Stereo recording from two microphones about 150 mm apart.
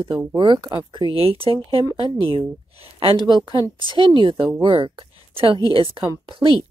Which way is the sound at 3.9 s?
30° right (ahead or behind).